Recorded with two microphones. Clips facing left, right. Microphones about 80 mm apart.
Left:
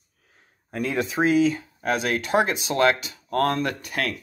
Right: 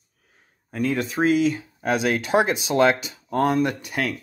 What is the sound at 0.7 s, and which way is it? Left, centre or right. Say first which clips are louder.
Speech: right 2 dB; centre.